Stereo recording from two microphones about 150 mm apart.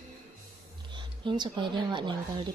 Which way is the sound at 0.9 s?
30° right (ahead or behind).